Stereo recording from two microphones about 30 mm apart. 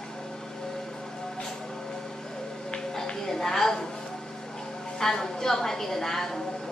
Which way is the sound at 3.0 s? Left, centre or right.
Centre.